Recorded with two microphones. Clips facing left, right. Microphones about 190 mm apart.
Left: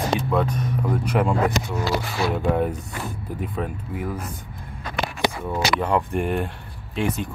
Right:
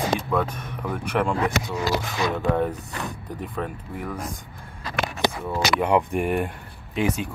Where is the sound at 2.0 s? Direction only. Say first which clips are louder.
Left 1 dB; 5° left (ahead or behind).